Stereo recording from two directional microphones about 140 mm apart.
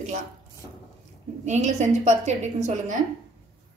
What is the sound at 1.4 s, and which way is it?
A woman's voice, 55° right (ahead or behind).